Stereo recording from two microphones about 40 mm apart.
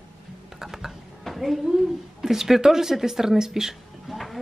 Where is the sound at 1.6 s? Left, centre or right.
Centre.